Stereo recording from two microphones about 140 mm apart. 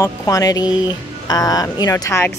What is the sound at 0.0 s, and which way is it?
Speech, 25° left (ahead or behind).